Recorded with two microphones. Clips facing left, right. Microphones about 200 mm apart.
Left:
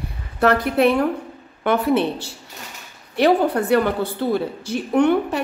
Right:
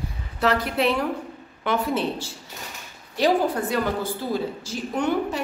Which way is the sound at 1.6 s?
60° left (ahead or behind).